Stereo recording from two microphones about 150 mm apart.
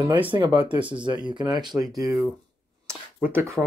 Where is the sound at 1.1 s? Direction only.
30° right (ahead or behind).